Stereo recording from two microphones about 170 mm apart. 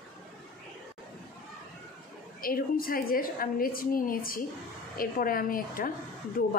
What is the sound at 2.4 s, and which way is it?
A woman's voice, 60° left (ahead or behind).